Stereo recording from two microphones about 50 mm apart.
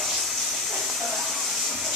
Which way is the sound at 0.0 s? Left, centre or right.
Centre.